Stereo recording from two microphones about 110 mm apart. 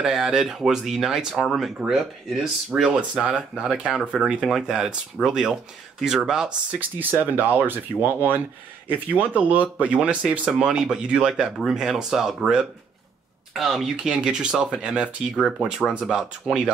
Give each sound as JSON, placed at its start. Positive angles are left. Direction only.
{"t": 0.0, "sound": "speech", "side_deg": -5}
{"t": 7.0, "sound": "speech", "side_deg": -15}